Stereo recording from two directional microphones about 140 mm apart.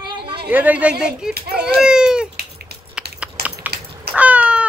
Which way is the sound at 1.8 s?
5° right (ahead or behind).